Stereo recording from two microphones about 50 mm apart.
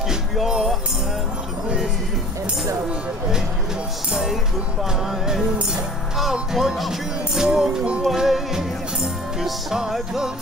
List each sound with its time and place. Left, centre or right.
0.1 s music: centre
4.1 s music: centre
6.5 s music: centre